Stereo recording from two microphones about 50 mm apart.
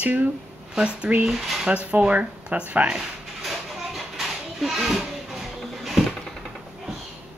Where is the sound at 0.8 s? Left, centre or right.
Right.